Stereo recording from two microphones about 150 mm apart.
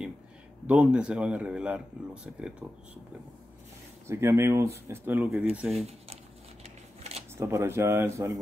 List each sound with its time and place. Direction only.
0.7 s speech: 10° right (ahead or behind)
4.1 s speech: 20° right (ahead or behind)
6.6 s shuffling cards: 45° right (ahead or behind)
7.3 s speech: 15° right (ahead or behind)